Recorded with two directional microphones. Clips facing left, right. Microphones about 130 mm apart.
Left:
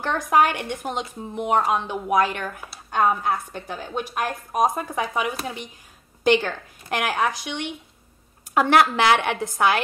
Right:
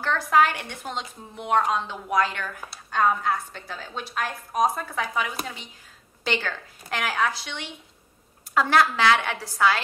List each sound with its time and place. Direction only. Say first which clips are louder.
0.0 s a woman's voice: left 1 dB; 15° left (ahead or behind)
8.7 s a woman's voice: left 2 dB; 20° left (ahead or behind)